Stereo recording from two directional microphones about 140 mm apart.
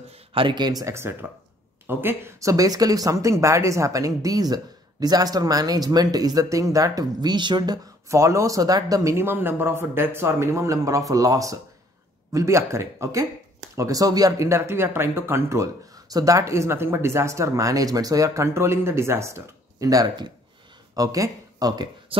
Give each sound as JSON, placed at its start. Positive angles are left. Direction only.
{"t": 0.1, "sound": "speech", "side_deg": -40}